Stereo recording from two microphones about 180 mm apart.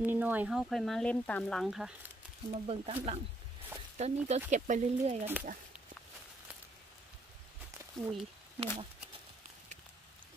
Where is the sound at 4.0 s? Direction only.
35° right (ahead or behind).